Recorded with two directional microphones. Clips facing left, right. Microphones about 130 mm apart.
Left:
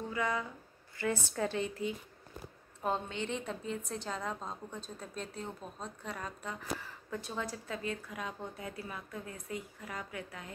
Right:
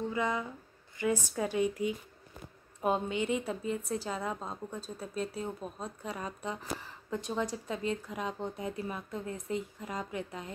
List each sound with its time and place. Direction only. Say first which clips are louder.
0.1 s a woman's voice: right 2 dB; 20° right (ahead or behind)